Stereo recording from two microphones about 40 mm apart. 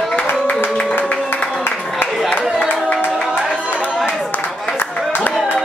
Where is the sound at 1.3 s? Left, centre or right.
Left.